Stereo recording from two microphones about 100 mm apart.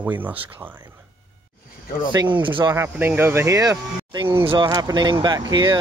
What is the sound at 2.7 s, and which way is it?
Speech, 25° right (ahead or behind).